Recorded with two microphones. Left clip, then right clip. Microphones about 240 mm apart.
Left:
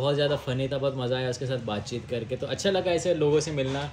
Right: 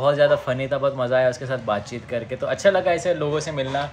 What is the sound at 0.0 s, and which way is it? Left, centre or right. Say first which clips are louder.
A man's voice: right 8 dB; centre.